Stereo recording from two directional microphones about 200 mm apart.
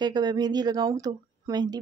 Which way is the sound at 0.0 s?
20° right (ahead or behind).